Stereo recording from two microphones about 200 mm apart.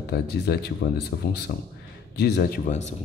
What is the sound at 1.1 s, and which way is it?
Speech, 65° left (ahead or behind).